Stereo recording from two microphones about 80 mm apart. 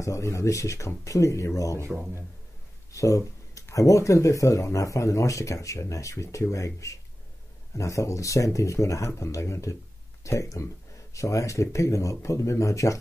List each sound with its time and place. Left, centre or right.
0.0 s speech: left
1.8 s speech: right
2.9 s speech: left